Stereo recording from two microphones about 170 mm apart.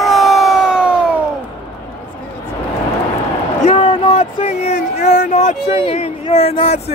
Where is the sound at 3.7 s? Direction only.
30° left (ahead or behind).